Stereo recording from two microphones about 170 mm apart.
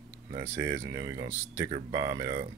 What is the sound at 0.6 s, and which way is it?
Speech, 15° right (ahead or behind).